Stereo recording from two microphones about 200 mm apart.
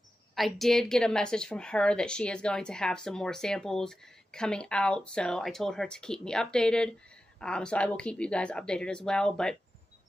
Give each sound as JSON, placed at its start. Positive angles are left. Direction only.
{"t": 0.4, "sound": "a woman's voice", "side_deg": 0}